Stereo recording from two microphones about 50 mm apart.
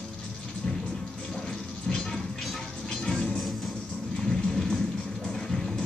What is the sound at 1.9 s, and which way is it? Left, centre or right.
Music, centre.